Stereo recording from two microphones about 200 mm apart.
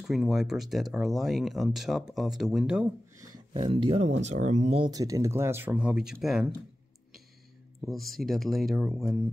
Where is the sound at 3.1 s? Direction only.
20° right (ahead or behind); by 6.5 s centre (ahead or behind).